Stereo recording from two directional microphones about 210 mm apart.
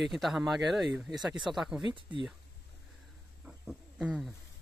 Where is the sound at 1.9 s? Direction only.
25° right (ahead or behind).